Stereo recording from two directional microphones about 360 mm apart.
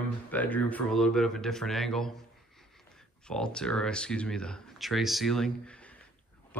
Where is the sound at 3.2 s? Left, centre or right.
Centre.